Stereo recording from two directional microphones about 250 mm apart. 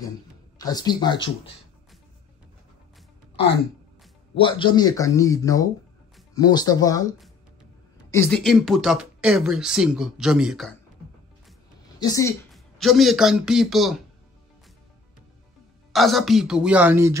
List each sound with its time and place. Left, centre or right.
0.6 s speech: centre
4.4 s speech: centre
8.1 s speech: centre
12.0 s speech: centre
12.4 s speech: centre
15.9 s speech: centre